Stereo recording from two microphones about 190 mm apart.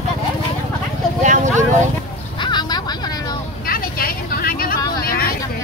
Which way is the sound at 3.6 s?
50° left (ahead or behind).